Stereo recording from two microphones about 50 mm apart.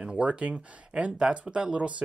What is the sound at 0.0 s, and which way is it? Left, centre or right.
Speech, right.